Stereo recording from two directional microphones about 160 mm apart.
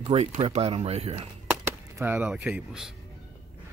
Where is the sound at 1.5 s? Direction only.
15° right (ahead or behind).